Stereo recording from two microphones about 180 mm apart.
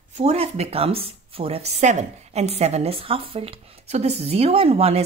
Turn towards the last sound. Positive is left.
turn(degrees=-35)  # may be behind; listen again after turning